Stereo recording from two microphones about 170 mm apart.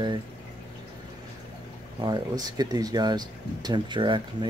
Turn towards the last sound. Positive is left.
turn(degrees=-30)  # may be behind; listen again after turning